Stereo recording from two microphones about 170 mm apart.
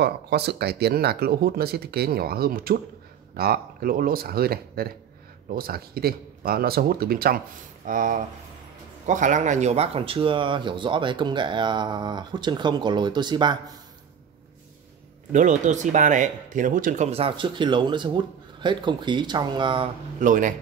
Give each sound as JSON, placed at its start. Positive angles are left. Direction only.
{"t": 0.0, "sound": "speech", "side_deg": -70}
{"t": 15.3, "sound": "speech", "side_deg": -45}
{"t": 20.2, "sound": "a man's voice", "side_deg": -50}